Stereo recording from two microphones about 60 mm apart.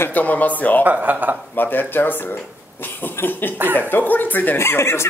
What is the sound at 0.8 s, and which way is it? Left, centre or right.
Speech, right.